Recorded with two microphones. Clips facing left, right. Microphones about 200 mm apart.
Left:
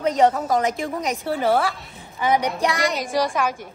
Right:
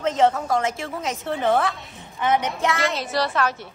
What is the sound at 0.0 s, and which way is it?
A woman's voice, 15° left (ahead or behind).